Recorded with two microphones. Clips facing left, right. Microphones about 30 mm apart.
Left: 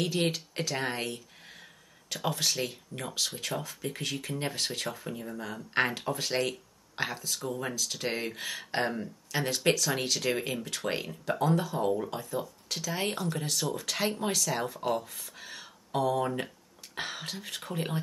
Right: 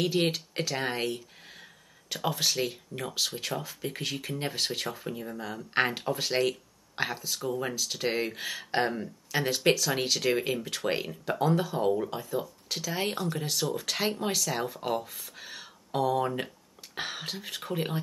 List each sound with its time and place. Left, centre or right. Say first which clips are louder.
0.0 s speech: right 2 dB; centre